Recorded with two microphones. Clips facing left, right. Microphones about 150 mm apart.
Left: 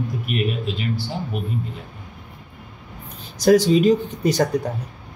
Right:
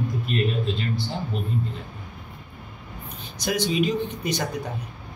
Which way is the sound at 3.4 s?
40° left (ahead or behind).